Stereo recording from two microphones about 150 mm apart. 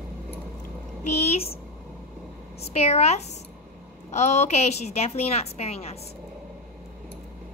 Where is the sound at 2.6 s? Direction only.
45° left (ahead or behind).